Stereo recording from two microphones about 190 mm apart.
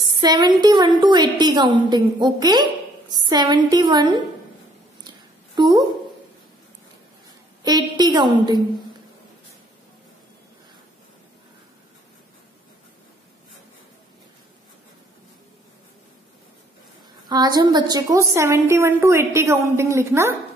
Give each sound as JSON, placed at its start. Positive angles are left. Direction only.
{"t": 0.2, "sound": "a woman's voice", "side_deg": -20}
{"t": 5.6, "sound": "a woman's voice", "side_deg": -20}
{"t": 7.6, "sound": "a woman's voice", "side_deg": -20}
{"t": 17.3, "sound": "a woman's voice", "side_deg": -20}